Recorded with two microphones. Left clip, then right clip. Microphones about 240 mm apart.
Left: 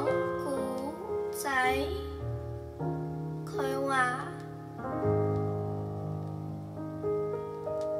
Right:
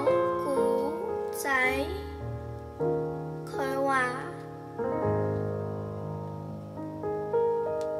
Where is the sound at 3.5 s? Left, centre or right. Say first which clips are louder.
Right 2 dB; left.